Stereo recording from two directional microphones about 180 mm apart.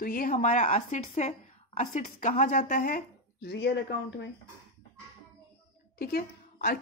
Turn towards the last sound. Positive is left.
turn(degrees=55)  # may be behind; listen again after turning